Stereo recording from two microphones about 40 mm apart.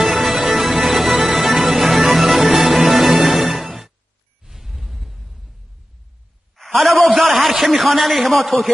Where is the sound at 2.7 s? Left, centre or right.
Centre.